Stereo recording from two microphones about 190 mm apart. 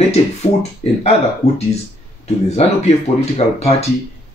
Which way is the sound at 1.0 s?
35° left (ahead or behind).